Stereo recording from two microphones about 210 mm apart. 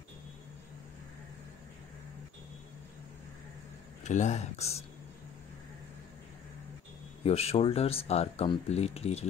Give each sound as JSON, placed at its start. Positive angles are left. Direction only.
{"t": 4.0, "sound": "speech", "side_deg": 35}
{"t": 7.2, "sound": "speech", "side_deg": 30}